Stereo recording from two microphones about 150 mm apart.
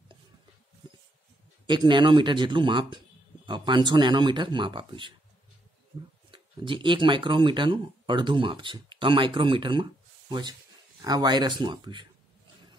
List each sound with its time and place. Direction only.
1.7 s speech: 30° right (ahead or behind)
6.3 s speech: 35° right (ahead or behind)
11.0 s speech: 25° right (ahead or behind)